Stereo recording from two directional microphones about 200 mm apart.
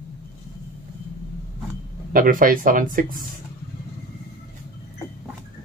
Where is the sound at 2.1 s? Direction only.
45° right (ahead or behind).